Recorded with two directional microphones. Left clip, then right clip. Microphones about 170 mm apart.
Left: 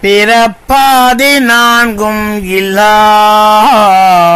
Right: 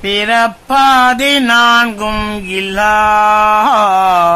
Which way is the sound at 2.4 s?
25° left (ahead or behind).